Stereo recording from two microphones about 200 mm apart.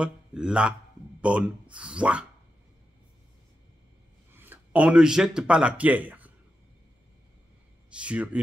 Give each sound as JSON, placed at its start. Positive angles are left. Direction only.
{"t": 0.0, "sound": "speech", "side_deg": -5}
{"t": 4.3, "sound": "speech", "side_deg": -10}
{"t": 7.9, "sound": "speech", "side_deg": -5}